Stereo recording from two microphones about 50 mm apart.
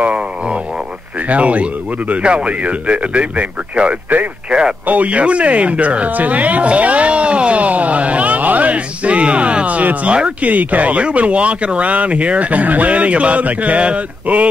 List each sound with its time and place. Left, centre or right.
0.0 s a sound: right
1.2 s speech: right
4.8 s speech: right